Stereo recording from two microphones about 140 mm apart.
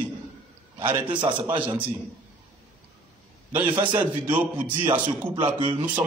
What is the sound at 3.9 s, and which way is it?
A man's voice, 15° right (ahead or behind).